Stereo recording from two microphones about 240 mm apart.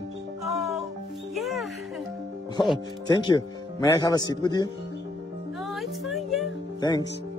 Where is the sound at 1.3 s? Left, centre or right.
Centre.